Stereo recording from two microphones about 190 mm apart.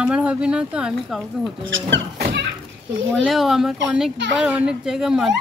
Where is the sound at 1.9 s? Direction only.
65° right (ahead or behind).